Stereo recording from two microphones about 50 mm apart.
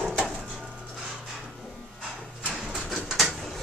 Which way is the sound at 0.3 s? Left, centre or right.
Centre.